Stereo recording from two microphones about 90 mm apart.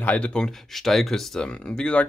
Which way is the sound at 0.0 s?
15° left (ahead or behind).